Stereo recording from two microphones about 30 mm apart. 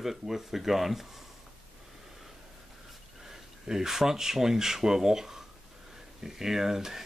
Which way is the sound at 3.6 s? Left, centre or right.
Centre.